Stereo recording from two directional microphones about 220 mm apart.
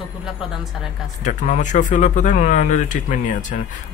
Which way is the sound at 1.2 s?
35° left (ahead or behind).